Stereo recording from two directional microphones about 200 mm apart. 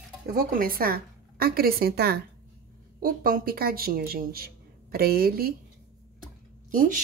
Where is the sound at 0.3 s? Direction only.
45° right (ahead or behind).